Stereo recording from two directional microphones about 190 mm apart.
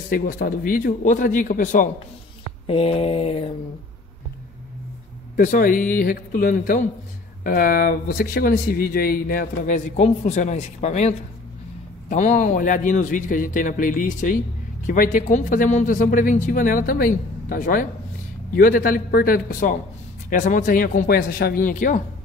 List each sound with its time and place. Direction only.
0.1 s speech: 45° left (ahead or behind)
2.6 s mantra: 30° left (ahead or behind)
5.3 s speech: 45° left (ahead or behind)
9.9 s speech: 35° left (ahead or behind)